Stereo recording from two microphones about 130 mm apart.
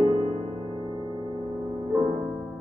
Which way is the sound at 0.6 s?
35° right (ahead or behind).